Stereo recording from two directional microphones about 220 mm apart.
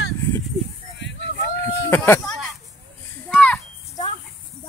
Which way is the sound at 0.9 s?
50° left (ahead or behind).